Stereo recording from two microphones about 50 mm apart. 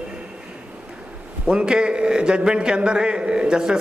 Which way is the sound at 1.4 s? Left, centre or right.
Centre.